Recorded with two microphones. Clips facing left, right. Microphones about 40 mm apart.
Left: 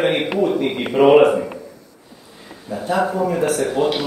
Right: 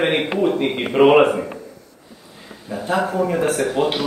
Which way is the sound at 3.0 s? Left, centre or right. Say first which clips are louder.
Even; right.